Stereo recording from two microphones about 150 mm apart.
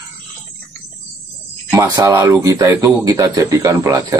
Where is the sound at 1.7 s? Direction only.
20° right (ahead or behind).